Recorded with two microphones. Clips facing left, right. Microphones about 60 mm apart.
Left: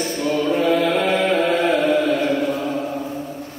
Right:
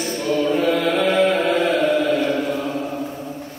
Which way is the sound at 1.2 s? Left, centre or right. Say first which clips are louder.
Even; centre.